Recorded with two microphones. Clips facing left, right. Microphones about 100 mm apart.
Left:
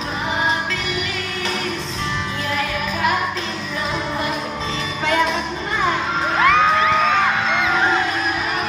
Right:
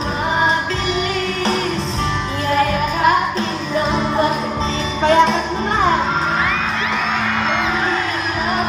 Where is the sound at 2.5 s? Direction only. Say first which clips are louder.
Right 8 dB; 35° right (ahead or behind).